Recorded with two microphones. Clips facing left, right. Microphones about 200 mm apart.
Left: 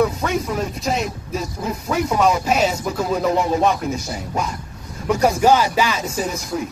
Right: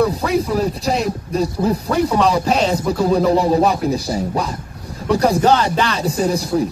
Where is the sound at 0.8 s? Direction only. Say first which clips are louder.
Right 3 dB; 35° right (ahead or behind).